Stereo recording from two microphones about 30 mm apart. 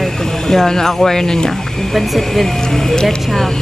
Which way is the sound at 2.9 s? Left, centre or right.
Left.